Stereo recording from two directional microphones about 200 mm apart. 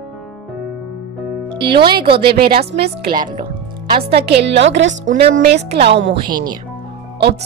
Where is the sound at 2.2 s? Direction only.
50° right (ahead or behind).